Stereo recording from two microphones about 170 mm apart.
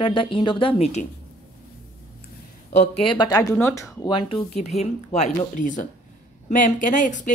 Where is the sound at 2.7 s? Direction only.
40° left (ahead or behind); by 3.4 s 25° left (ahead or behind).